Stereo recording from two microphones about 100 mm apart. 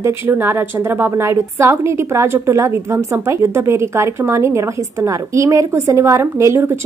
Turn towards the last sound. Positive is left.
turn(degrees=-30)  # may be behind; listen again after turning